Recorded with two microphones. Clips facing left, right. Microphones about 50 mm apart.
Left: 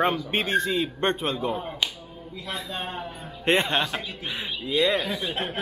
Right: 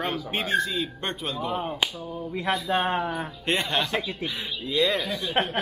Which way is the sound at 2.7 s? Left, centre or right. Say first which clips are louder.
Right 8 dB; right.